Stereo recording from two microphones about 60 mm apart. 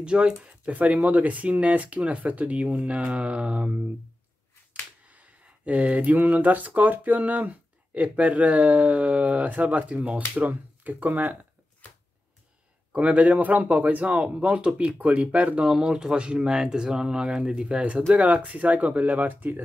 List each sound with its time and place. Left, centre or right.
0.0 s speech: centre
5.0 s speech: right
12.9 s speech: right
15.6 s speech: centre; by 19.6 s right